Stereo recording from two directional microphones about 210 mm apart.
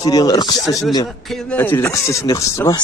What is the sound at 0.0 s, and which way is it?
Speech, 15° left (ahead or behind).